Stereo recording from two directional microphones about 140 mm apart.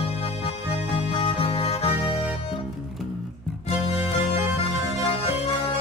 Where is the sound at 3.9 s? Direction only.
15° right (ahead or behind).